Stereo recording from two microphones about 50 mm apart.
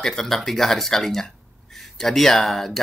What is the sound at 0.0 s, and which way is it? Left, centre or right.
Speech, centre.